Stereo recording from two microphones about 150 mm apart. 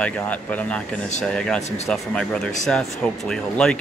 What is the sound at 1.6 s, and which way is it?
Speech, 50° left (ahead or behind).